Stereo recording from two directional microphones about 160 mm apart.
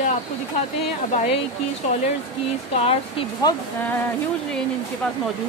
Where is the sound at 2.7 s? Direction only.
40° left (ahead or behind).